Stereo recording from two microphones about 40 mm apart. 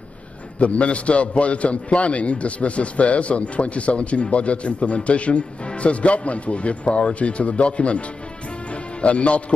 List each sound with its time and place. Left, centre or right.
0.6 s a man's voice: left
9.0 s a man's voice: left